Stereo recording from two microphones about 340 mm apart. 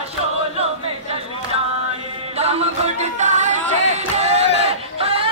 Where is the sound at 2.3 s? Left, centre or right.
Centre.